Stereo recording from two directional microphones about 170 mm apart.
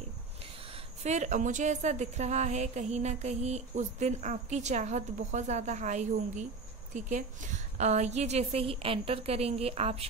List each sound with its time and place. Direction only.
1.0 s a woman's voice: 45° right (ahead or behind)